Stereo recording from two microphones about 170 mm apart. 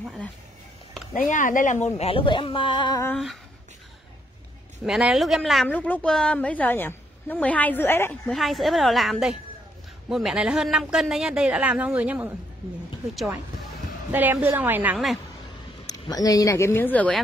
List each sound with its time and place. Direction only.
0.0 s speech: centre (ahead or behind)
1.3 s speech: 50° left (ahead or behind)
2.0 s speech: 35° left (ahead or behind)
4.8 s a woman's voice: centre (ahead or behind); by 8.2 s 15° left (ahead or behind)
8.3 s a woman's voice: centre (ahead or behind)
14.1 s a woman's voice: 10° right (ahead or behind)
15.9 s a woman's voice: 20° left (ahead or behind)